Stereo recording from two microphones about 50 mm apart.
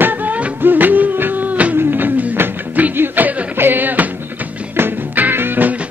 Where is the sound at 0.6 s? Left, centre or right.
Right.